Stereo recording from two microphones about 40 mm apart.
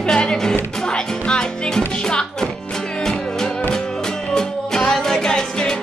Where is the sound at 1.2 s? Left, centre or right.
Left.